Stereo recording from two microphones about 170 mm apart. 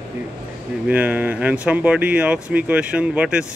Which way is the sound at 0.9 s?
10° right (ahead or behind).